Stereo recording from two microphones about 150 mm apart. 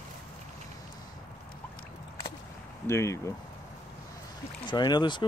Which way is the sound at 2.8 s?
20° left (ahead or behind).